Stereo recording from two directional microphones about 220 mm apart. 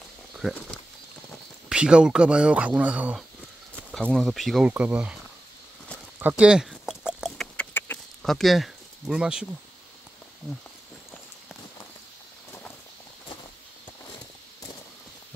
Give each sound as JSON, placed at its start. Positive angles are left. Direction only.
{"t": 0.4, "sound": "speech", "side_deg": 0}
{"t": 6.1, "sound": "chicken", "side_deg": -5}
{"t": 8.2, "sound": "speech", "side_deg": 0}